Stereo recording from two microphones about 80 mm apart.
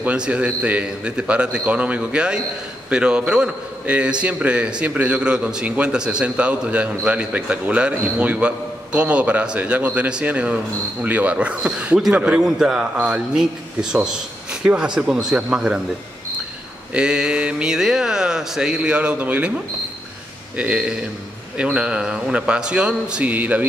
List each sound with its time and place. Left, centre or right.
0.0 s a man's voice: centre
16.9 s a man's voice: centre
20.5 s a man's voice: centre